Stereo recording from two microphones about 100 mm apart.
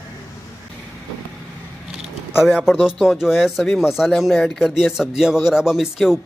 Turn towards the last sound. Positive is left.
turn(degrees=-5)  # may be behind; listen again after turning